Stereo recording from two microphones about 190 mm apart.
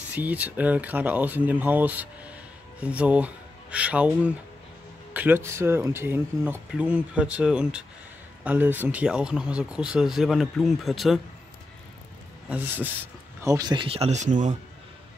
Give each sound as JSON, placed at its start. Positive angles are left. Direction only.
{"t": 0.1, "sound": "speech", "side_deg": -10}
{"t": 12.4, "sound": "speech", "side_deg": -10}